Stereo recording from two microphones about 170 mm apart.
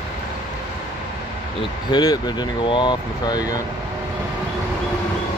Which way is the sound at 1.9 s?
25° left (ahead or behind).